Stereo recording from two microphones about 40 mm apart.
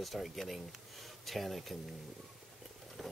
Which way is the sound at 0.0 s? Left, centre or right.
Centre.